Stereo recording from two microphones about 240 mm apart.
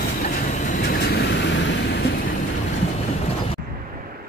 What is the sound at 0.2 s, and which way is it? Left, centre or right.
Vehicle, left.